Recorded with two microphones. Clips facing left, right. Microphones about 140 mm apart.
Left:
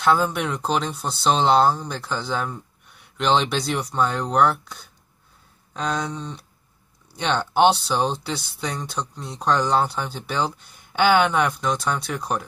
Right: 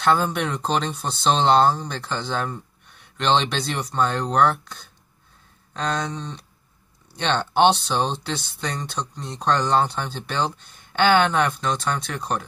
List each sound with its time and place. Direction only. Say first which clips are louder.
0.0 s speech: even; 5° left (ahead or behind)